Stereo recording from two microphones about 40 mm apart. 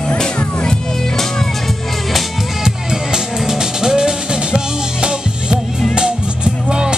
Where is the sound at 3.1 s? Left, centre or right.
Centre.